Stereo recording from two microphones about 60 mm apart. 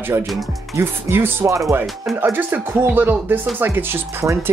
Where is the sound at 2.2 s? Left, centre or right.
Right.